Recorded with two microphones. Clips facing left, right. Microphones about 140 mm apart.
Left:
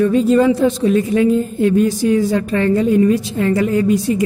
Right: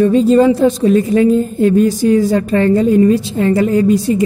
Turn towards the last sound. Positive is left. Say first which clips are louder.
# right 3 dB
turn(degrees=-35)  # may be behind; listen again after turning